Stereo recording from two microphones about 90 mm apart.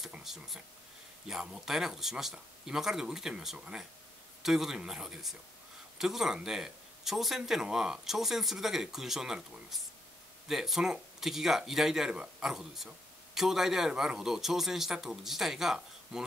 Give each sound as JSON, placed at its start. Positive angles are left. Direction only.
{"t": 0.0, "sound": "speech", "side_deg": -5}